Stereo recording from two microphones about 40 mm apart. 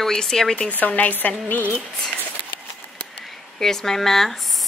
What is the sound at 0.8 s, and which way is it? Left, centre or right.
Speech, left.